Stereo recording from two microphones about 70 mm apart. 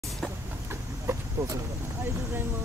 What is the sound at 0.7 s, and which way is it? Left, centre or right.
Vehicle, right.